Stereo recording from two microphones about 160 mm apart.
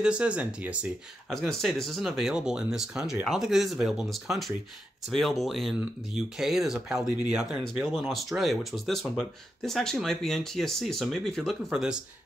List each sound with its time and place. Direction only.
0.0 s speech: 5° right (ahead or behind)